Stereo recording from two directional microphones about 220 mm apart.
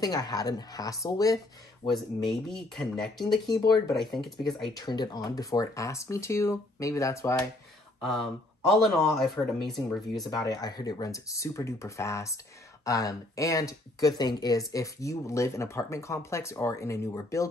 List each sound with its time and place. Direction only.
0.0 s speech: 15° left (ahead or behind)
2.2 s speech: centre (ahead or behind)
3.3 s speech: 20° left (ahead or behind)
8.0 s speech: centre (ahead or behind)
10.3 s speech: 15° left (ahead or behind)